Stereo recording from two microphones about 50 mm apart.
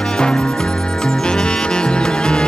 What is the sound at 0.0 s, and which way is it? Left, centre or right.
Music, centre.